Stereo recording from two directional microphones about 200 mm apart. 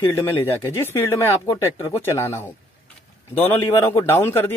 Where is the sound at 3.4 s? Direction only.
15° left (ahead or behind).